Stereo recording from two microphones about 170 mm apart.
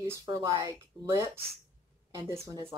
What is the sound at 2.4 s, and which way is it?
Speech, 15° right (ahead or behind).